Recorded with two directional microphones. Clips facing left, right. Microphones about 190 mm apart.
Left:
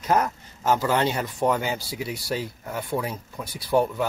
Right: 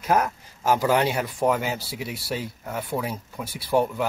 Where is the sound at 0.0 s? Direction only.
5° right (ahead or behind).